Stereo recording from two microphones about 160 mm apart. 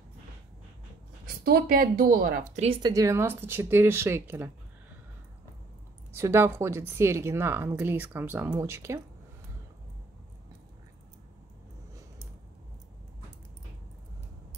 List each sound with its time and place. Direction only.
1.4 s a woman's voice: 70° right (ahead or behind)
2.6 s speech: 30° right (ahead or behind)
2.9 s speech: 20° right (ahead or behind)
6.1 s speech: 15° right (ahead or behind)